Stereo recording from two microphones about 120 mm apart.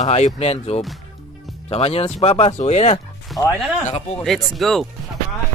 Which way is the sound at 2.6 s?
65° left (ahead or behind).